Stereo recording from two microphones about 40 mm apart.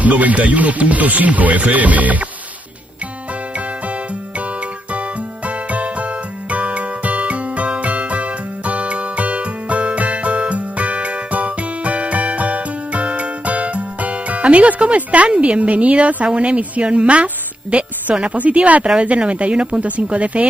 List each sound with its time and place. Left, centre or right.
0.0 s speech: right
5.7 s music: right
15.2 s a woman's voice: right